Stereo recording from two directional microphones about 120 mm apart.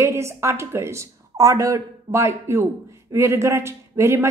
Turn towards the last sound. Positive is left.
turn(degrees=-20)  # may be behind; listen again after turning